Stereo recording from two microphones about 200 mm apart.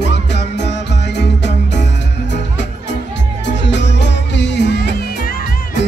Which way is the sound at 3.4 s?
60° left (ahead or behind).